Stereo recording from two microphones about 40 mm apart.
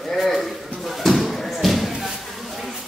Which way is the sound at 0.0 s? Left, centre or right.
Centre.